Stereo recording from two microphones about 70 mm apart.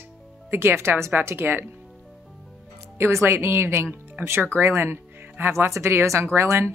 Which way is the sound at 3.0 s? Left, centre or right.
Right.